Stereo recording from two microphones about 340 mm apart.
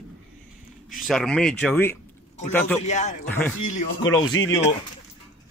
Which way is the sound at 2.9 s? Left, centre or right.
Left.